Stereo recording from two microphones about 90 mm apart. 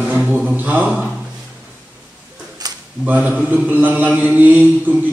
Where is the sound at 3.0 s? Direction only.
20° right (ahead or behind).